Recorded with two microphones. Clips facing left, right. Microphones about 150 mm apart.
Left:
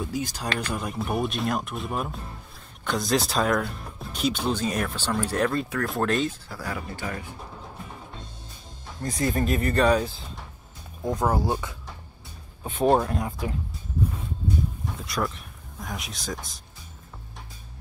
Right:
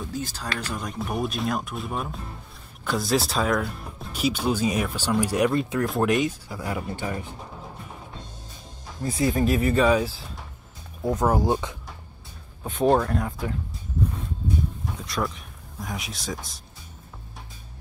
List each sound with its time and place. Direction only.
0.0 s speech: 15° left (ahead or behind)
0.7 s speech: centre (ahead or behind); by 7.2 s 20° right (ahead or behind)
9.0 s speech: 5° right (ahead or behind)
12.6 s speech: centre (ahead or behind)
13.0 s speech: 10° left (ahead or behind)
15.0 s speech: centre (ahead or behind)